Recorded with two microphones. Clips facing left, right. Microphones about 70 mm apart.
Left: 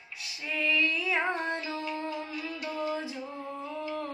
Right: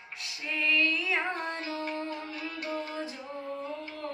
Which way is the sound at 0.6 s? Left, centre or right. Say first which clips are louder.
Even; centre.